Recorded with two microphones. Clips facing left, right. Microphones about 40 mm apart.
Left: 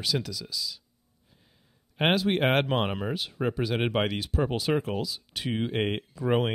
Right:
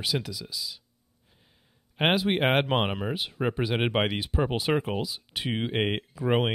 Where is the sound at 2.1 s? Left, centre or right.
Centre.